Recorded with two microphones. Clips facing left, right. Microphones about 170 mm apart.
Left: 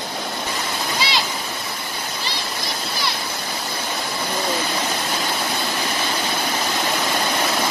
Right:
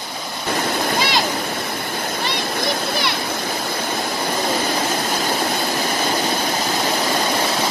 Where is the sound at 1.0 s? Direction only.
50° right (ahead or behind).